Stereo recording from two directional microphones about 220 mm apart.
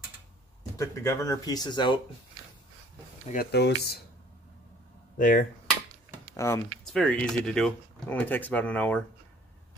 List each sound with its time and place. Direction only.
0.7 s speech: 15° left (ahead or behind)
3.3 s speech: 45° left (ahead or behind)
5.1 s speech: 35° left (ahead or behind)
6.3 s speech: 15° left (ahead or behind)
6.8 s speech: 5° left (ahead or behind)